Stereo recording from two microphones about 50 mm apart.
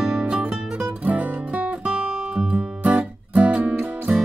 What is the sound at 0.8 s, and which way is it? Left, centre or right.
Music, right.